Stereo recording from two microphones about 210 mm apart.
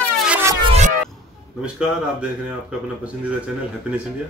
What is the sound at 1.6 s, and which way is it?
Speech, 5° right (ahead or behind).